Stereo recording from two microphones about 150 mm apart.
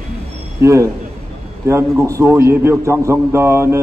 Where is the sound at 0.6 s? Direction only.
20° right (ahead or behind).